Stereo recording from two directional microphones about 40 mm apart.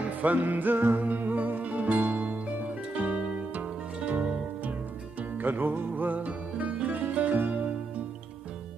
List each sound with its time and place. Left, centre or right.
0.2 s music: right
1.0 s music: right
5.4 s music: right